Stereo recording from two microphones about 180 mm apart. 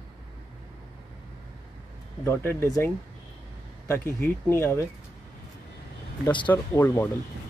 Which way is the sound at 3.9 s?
15° left (ahead or behind).